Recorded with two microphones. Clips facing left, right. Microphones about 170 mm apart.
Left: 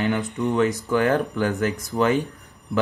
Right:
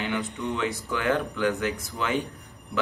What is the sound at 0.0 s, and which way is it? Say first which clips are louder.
Speech: left 6 dB; 45° left (ahead or behind).